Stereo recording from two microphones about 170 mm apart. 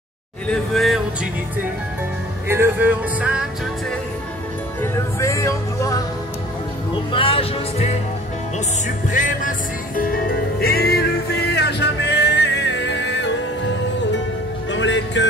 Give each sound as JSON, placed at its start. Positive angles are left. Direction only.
{"t": 0.5, "sound": "speech", "side_deg": 0}
{"t": 2.4, "sound": "music", "side_deg": -15}
{"t": 4.9, "sound": "music", "side_deg": 20}
{"t": 7.1, "sound": "music", "side_deg": 30}
{"t": 8.8, "sound": "music", "side_deg": 50}
{"t": 9.9, "sound": "music", "side_deg": 60}
{"t": 14.7, "sound": "music", "side_deg": 90}